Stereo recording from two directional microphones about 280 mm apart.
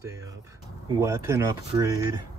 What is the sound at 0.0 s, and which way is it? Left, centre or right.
Speech, centre.